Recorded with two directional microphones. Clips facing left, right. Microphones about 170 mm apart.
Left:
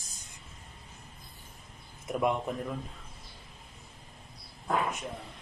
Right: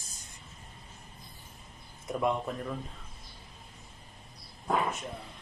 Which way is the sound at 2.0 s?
15° left (ahead or behind).